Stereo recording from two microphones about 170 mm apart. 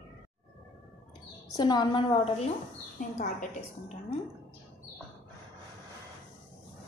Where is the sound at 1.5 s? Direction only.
25° left (ahead or behind).